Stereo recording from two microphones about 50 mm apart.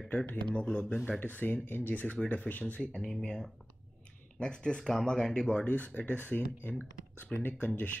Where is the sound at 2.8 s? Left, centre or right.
Centre.